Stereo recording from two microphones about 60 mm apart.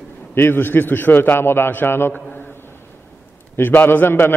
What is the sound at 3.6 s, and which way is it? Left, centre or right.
Speech, left.